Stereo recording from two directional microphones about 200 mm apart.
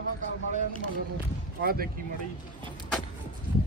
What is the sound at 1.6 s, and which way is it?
Speech, 50° right (ahead or behind).